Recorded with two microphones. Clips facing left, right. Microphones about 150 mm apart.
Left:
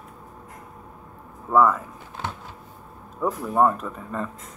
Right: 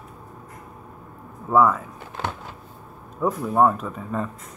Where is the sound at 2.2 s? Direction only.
70° right (ahead or behind).